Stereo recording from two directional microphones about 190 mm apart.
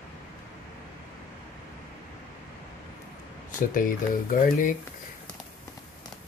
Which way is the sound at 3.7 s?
45° left (ahead or behind).